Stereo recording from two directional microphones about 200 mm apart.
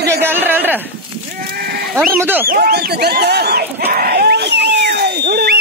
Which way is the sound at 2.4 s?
45° right (ahead or behind).